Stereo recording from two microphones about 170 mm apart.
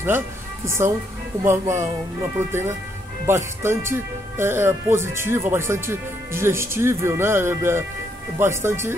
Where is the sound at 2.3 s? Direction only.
15° right (ahead or behind).